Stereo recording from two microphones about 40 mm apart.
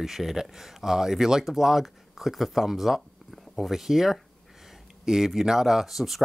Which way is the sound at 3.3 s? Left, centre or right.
Centre.